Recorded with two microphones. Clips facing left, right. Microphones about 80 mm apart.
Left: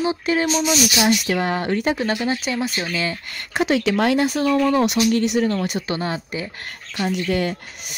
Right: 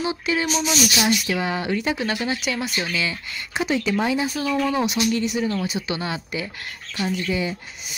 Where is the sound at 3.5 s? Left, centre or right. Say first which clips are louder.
Left 4 dB; left.